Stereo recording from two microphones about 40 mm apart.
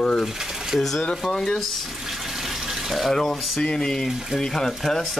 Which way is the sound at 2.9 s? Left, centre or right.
Centre.